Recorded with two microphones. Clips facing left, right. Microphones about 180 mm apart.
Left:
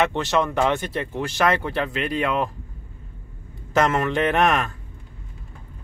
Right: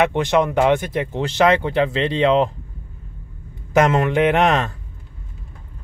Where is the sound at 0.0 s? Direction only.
15° right (ahead or behind).